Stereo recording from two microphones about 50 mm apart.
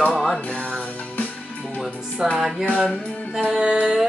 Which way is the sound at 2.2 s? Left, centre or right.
Centre.